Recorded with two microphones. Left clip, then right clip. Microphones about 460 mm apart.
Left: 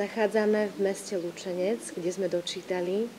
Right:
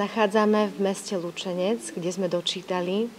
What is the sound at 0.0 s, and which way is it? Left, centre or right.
A woman's voice, right.